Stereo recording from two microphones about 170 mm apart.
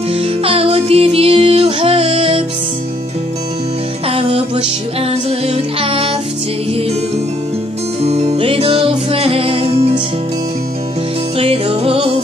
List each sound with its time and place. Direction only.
0.1 s music: 35° right (ahead or behind)
4.1 s music: 35° right (ahead or behind)
5.5 s music: 35° right (ahead or behind)
8.0 s music: 40° right (ahead or behind)
11.3 s music: 35° right (ahead or behind)